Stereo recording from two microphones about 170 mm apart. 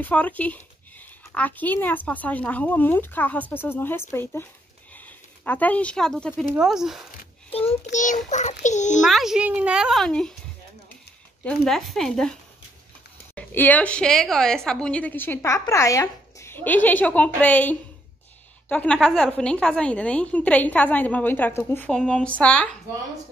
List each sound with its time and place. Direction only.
0.0 s a woman's voice: 10° left (ahead or behind)
7.9 s a child's voice: 45° left (ahead or behind)
9.0 s a child's voice: centre (ahead or behind)
11.4 s a child's voice: centre (ahead or behind)